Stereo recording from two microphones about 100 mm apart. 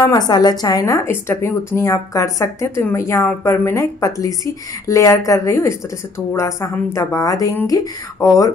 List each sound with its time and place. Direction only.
0.0 s a woman's voice: 40° left (ahead or behind)
1.0 s a woman's voice: 25° left (ahead or behind)